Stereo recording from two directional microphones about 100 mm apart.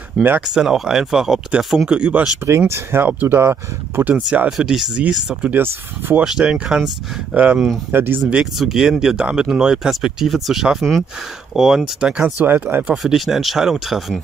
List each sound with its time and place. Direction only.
0.2 s speech: centre (ahead or behind)
2.7 s speech: 25° right (ahead or behind)
4.5 s speech: 5° right (ahead or behind)
5.5 s speech: 20° right (ahead or behind)
6.2 s speech: 5° right (ahead or behind)
8.4 s speech: 5° right (ahead or behind)
12.9 s speech: 5° right (ahead or behind)